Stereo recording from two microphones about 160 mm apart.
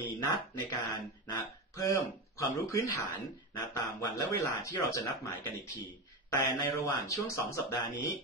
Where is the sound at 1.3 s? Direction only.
20° left (ahead or behind).